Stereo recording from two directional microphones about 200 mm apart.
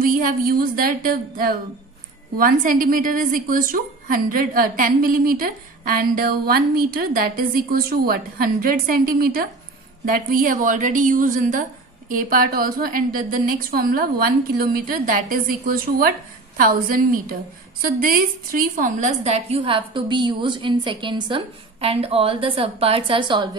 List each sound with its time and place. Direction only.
0.0 s a woman's voice: 45° right (ahead or behind); by 23.6 s 20° right (ahead or behind)